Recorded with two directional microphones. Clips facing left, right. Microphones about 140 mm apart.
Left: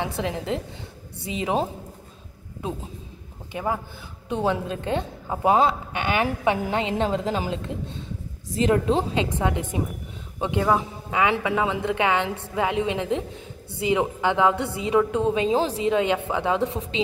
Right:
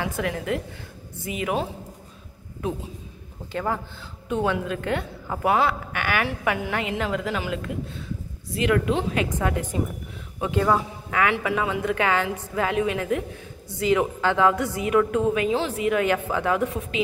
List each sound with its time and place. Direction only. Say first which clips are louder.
0.0 s a woman's voice: even; 25° left (ahead or behind)
3.5 s a man's voice: even; 15° left (ahead or behind)
15.5 s a woman's voice: left 2 dB; 35° left (ahead or behind)